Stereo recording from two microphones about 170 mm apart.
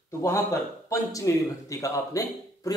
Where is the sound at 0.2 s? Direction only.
15° left (ahead or behind).